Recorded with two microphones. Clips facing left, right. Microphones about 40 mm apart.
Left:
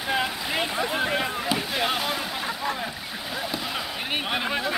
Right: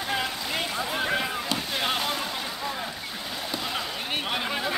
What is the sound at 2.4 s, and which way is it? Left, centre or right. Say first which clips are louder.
Boat: left 3 dB; centre.